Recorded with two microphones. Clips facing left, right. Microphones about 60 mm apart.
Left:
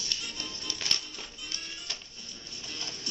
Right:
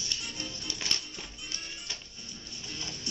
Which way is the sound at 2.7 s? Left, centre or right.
Centre.